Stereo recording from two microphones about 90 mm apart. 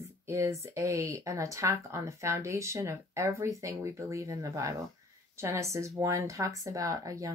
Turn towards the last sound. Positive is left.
turn(degrees=-40)  # may be behind; listen again after turning